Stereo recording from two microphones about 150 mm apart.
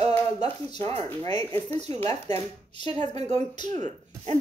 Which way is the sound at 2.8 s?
50° right (ahead or behind).